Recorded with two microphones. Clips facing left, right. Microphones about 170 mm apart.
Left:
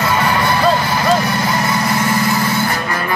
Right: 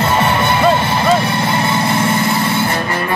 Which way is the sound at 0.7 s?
25° right (ahead or behind).